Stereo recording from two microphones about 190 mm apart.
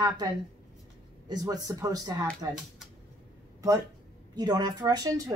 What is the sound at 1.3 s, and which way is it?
Speech, 20° right (ahead or behind).